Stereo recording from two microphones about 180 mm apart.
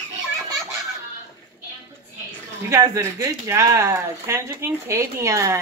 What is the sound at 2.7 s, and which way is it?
Speech, 15° right (ahead or behind).